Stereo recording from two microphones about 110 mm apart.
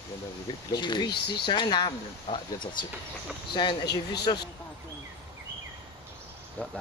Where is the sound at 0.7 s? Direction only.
40° left (ahead or behind).